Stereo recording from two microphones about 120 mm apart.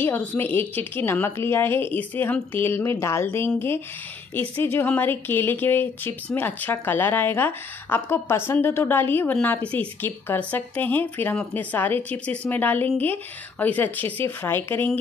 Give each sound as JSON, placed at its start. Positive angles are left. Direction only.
{"t": 0.0, "sound": "a woman's voice", "side_deg": 15}